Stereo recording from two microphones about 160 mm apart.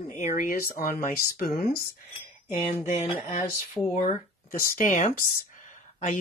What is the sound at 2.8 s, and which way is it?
Speech, 55° left (ahead or behind).